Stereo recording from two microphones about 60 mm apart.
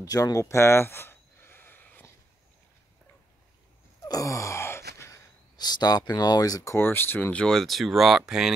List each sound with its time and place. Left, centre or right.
0.0 s a sound: left
4.1 s groan: left
5.9 s speech: left
6.8 s speech: left
7.3 s speech: centre